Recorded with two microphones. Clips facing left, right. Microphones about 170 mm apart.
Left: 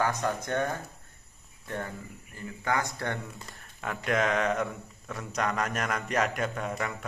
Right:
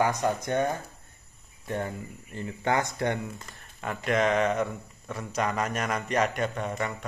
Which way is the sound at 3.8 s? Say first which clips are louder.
Right 2 dB; centre (ahead or behind).